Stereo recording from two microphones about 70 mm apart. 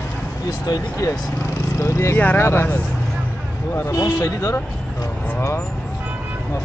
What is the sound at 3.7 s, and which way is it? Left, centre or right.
Speech, left.